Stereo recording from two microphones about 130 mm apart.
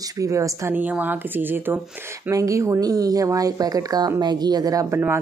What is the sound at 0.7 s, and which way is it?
Speech, 15° right (ahead or behind).